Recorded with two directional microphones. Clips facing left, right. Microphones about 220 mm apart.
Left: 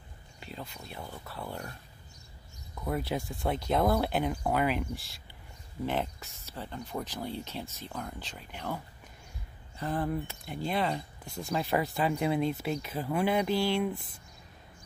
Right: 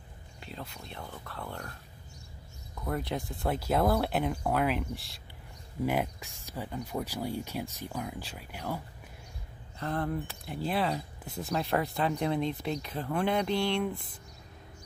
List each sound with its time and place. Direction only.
0.4 s speech: centre (ahead or behind)
2.8 s speech: 5° left (ahead or behind)
5.9 s speech: 10° right (ahead or behind)
9.8 s speech: 5° left (ahead or behind)